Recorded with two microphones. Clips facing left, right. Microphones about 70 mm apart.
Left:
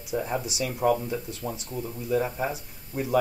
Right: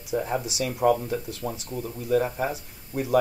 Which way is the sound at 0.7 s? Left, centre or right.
Right.